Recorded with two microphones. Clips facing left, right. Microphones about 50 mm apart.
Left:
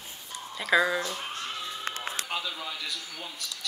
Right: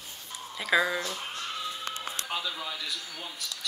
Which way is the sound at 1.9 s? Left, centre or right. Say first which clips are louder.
Left 2 dB; left.